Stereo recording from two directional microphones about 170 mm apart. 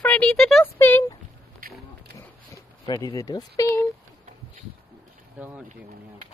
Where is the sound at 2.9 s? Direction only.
20° left (ahead or behind).